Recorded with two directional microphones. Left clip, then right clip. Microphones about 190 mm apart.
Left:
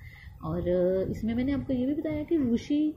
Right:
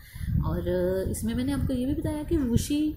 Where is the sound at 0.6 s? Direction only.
10° left (ahead or behind).